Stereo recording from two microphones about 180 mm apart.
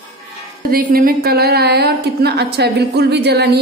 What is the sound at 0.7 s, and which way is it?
A woman's voice, 55° right (ahead or behind).